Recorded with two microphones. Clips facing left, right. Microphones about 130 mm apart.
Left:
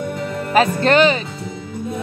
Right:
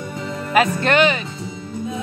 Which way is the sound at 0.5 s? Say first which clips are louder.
Left 2 dB; 35° left (ahead or behind).